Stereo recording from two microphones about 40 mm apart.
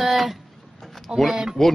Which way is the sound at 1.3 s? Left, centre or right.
Centre.